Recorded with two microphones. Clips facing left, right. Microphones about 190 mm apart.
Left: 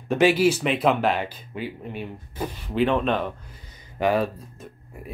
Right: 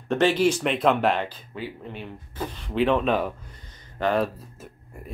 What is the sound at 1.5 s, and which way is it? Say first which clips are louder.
Speech: left 2 dB; 15° left (ahead or behind).